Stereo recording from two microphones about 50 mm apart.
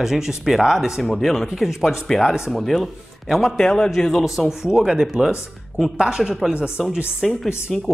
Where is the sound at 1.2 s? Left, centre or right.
Centre.